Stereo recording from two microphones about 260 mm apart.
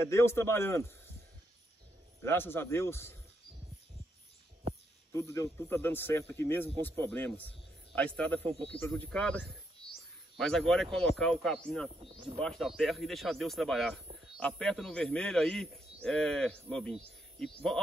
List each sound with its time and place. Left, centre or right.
0.0 s speech: centre
2.2 s speech: centre
5.1 s a man's voice: centre
12.0 s speech: right
12.4 s a man's voice: centre